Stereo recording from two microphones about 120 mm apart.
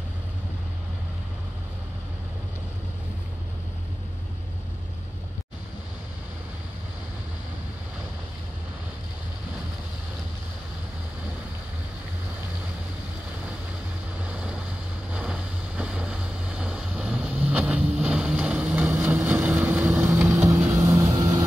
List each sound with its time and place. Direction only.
14.2 s vehicle: 10° right (ahead or behind)
20.4 s vehicle: 30° right (ahead or behind)